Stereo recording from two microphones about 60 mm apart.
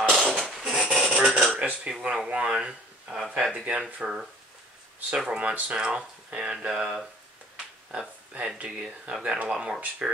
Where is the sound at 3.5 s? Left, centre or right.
Centre.